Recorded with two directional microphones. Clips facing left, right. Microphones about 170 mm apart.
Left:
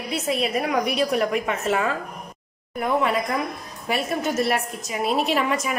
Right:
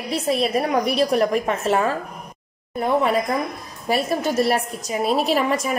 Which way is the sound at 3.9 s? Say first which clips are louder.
Right 3 dB; 35° right (ahead or behind).